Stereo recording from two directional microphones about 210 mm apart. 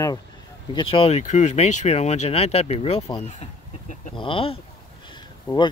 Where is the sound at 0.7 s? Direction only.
25° left (ahead or behind).